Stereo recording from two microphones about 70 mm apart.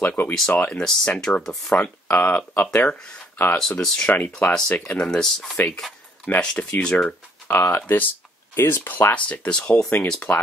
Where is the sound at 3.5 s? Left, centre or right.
Centre.